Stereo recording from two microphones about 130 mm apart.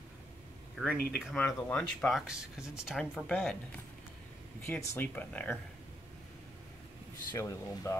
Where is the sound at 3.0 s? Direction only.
5° left (ahead or behind).